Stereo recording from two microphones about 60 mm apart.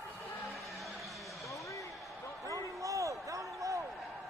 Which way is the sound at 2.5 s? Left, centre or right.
Right.